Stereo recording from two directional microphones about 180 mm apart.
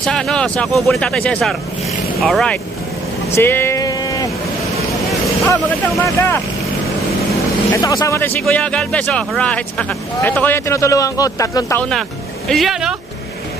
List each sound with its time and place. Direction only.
0.0 s speech: 5° left (ahead or behind)
3.3 s a sound: 10° left (ahead or behind)
6.0 s speech: 15° left (ahead or behind)
7.7 s speech: 20° left (ahead or behind)
12.4 s speech: centre (ahead or behind)